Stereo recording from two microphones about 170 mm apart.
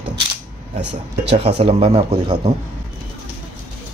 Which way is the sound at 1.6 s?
35° right (ahead or behind).